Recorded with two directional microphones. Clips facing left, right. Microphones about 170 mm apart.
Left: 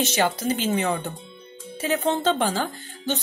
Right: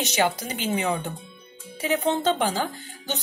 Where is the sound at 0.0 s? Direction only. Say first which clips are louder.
Left 2 dB; 15° right (ahead or behind).